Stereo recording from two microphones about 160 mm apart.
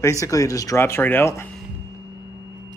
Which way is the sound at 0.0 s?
20° left (ahead or behind).